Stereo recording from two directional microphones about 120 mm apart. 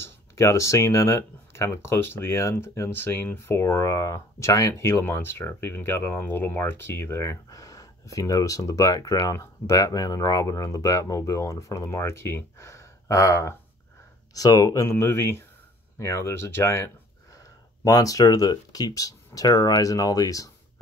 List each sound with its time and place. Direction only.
0.4 s speech: 25° left (ahead or behind)